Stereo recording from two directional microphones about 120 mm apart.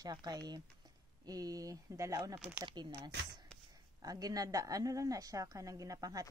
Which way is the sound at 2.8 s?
40° right (ahead or behind).